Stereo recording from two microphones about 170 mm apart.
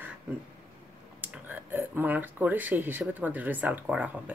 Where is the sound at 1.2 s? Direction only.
10° right (ahead or behind).